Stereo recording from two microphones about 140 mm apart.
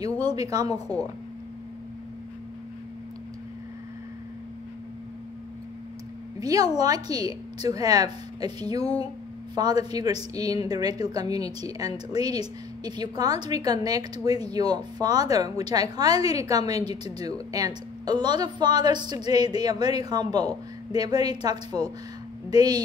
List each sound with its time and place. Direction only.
0.0 s a woman's voice: 30° right (ahead or behind)
6.4 s a woman's voice: 25° right (ahead or behind)
8.8 s speech: 45° left (ahead or behind)
9.6 s a woman's voice: 30° right (ahead or behind)